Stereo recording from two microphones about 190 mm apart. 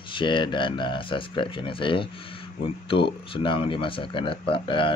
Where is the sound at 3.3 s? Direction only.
25° left (ahead or behind).